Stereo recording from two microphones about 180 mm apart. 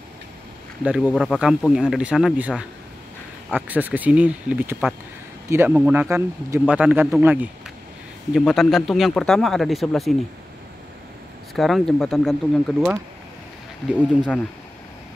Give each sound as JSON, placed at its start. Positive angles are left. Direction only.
{"t": 0.8, "sound": "speech", "side_deg": -5}
{"t": 11.5, "sound": "speech", "side_deg": 0}